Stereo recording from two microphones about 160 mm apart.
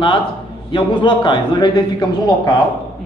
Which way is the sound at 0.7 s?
30° left (ahead or behind).